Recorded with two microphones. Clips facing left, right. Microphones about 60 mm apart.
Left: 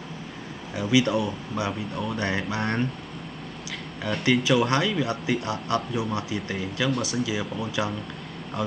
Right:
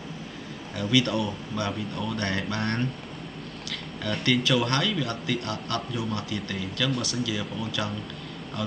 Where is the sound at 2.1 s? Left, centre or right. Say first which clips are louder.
Left 2 dB; centre.